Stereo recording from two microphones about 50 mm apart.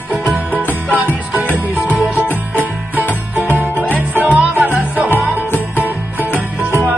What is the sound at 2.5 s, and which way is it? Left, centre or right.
Music, right.